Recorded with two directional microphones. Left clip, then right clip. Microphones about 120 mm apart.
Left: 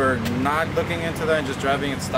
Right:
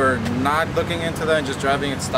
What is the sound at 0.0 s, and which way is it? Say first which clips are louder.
Speech: right 2 dB; 15° right (ahead or behind).